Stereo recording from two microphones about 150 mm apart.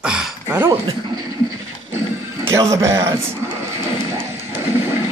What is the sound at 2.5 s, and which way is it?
Speech, 20° right (ahead or behind).